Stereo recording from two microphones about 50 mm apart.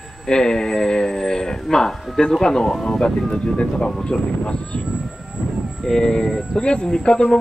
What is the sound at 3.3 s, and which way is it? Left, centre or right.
Speech, centre.